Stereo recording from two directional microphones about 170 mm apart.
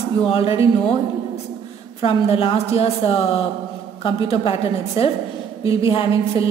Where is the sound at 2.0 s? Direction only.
35° left (ahead or behind).